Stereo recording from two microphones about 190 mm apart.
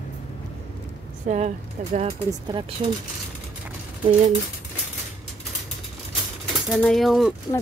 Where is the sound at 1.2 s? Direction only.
35° right (ahead or behind).